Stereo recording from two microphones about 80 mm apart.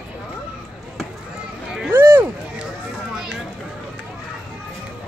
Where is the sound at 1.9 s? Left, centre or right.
Right.